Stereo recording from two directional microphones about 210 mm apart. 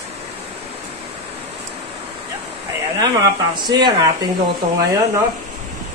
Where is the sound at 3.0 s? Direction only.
20° right (ahead or behind).